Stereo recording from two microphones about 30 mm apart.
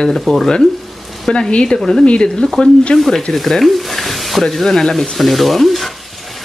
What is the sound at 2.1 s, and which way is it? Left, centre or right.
Speech, left.